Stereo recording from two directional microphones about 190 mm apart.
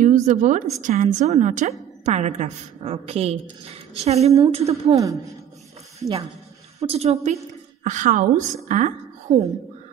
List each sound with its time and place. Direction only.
0.0 s a woman's voice: 40° right (ahead or behind)
4.8 s a woman's voice: 15° right (ahead or behind)
6.8 s a woman's voice: 35° right (ahead or behind)